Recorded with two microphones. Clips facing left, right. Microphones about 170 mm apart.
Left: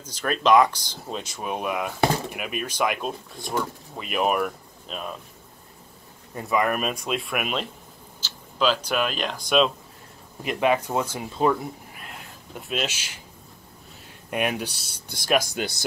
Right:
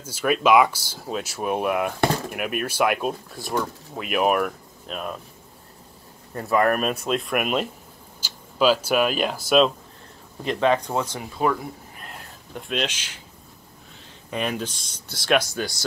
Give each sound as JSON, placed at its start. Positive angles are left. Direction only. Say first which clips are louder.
{"t": 0.0, "sound": "speech", "louder": "right 3 dB", "side_deg": -10}
{"t": 6.4, "sound": "speech", "louder": "right 3 dB", "side_deg": 5}
{"t": 10.4, "sound": "speech", "louder": "right 1 dB", "side_deg": 10}
{"t": 11.1, "sound": "speech", "louder": "left 3 dB", "side_deg": 25}
{"t": 12.5, "sound": "speech", "louder": "right 2 dB", "side_deg": 5}
{"t": 14.3, "sound": "speech", "louder": "left 1 dB", "side_deg": 10}